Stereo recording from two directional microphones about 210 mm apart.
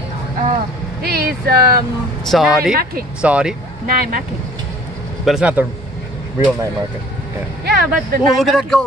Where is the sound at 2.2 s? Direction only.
Centre (ahead or behind).